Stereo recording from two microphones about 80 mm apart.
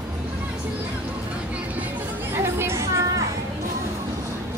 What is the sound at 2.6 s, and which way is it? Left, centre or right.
Music, right.